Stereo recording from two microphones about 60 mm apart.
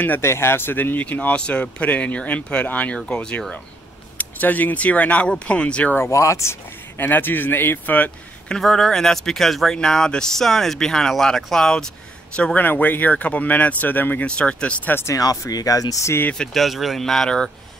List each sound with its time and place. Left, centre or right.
0.2 s speech: left; by 3.4 s centre
4.2 s speech: left
5.9 s speech: left
7.0 s a man's voice: left
8.5 s speech: centre
12.5 s speech: left
14.2 s speech: centre
15.1 s speech: left
16.3 s speech: centre